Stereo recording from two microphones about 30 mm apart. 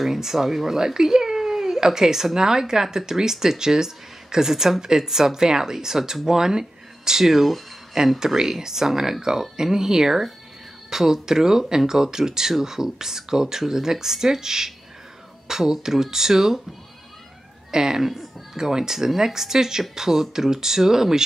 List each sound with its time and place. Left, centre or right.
0.0 s speech: centre
17.6 s speech: right
18.0 s music: centre
18.6 s speech: centre